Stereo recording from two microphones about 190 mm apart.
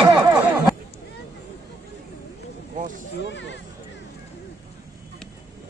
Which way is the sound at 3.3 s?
70° left (ahead or behind).